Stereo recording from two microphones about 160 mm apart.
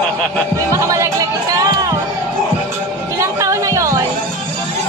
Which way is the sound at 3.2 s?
20° right (ahead or behind).